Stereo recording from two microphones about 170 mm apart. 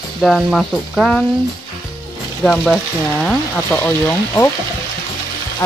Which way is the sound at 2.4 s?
5° left (ahead or behind).